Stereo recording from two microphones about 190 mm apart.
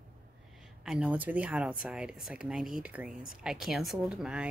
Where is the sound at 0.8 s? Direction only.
5° right (ahead or behind).